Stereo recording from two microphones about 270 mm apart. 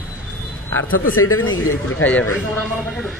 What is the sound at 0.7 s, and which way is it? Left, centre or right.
Speech, left.